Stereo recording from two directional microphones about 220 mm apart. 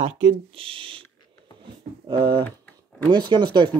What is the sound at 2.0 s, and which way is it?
Speech, 20° right (ahead or behind).